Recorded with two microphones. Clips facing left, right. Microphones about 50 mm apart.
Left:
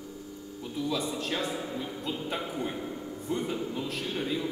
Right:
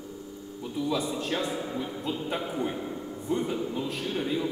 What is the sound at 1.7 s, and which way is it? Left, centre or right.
Music, centre.